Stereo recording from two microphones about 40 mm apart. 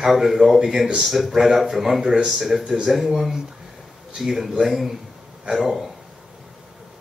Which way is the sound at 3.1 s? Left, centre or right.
Centre.